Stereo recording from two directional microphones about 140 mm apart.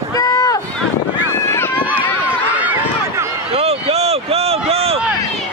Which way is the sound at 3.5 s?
45° right (ahead or behind).